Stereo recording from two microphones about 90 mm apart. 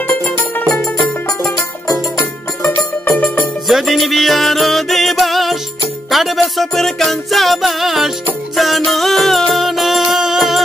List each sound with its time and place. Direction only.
3.1 s music: 20° left (ahead or behind)
3.6 s music: centre (ahead or behind)